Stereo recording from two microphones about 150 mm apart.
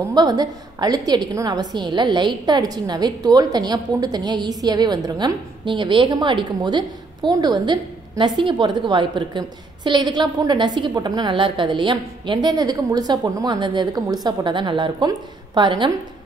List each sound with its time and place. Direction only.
0.1 s a woman's voice: 25° right (ahead or behind)